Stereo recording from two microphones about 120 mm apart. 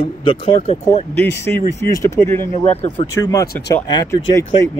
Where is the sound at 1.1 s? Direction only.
20° left (ahead or behind).